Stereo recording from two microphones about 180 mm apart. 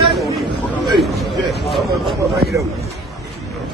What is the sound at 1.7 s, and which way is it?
Speech, centre (ahead or behind).